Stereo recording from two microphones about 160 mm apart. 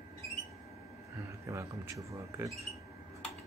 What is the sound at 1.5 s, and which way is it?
Speech, 20° right (ahead or behind).